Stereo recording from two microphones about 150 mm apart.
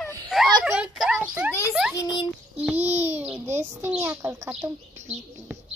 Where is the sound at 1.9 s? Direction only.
25° left (ahead or behind).